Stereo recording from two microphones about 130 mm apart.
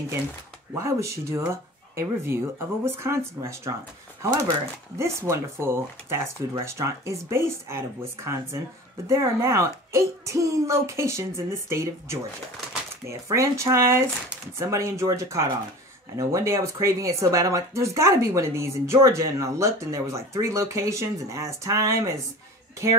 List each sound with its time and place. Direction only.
0.7 s speech: 20° right (ahead or behind)